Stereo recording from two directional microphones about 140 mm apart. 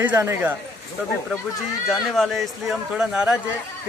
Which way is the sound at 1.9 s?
Centre (ahead or behind).